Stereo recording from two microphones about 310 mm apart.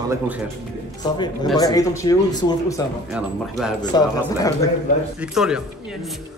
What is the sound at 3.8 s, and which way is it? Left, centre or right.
Speech, centre.